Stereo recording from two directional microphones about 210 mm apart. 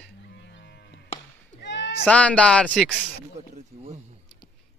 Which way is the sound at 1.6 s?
55° left (ahead or behind).